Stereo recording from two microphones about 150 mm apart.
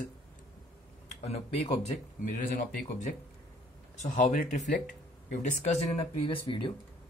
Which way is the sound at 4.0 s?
55° left (ahead or behind).